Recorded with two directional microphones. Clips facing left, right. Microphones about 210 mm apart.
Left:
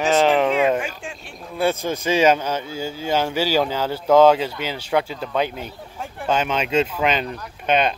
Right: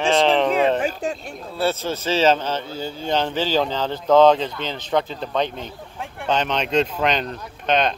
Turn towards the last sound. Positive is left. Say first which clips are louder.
# left 1 dB
turn(degrees=10)  # may be behind; listen again after turning